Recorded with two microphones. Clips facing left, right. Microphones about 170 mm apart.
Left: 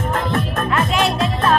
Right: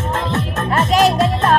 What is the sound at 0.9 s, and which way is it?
Music, 40° right (ahead or behind).